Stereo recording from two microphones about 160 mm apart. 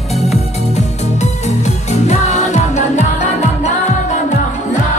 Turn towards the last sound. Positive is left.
turn(degrees=45)  # may be behind; listen again after turning